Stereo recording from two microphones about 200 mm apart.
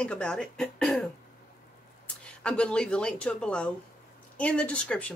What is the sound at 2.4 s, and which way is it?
A woman's voice, 5° left (ahead or behind).